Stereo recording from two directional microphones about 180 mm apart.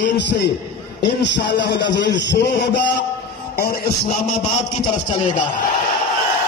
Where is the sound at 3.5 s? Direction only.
60° left (ahead or behind).